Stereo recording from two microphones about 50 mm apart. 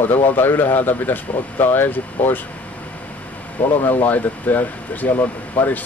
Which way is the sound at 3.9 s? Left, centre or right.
Left.